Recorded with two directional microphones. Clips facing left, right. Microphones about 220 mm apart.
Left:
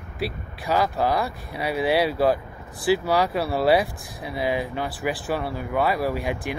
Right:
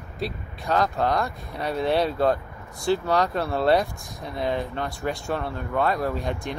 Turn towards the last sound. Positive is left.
turn(degrees=5)  # may be behind; listen again after turning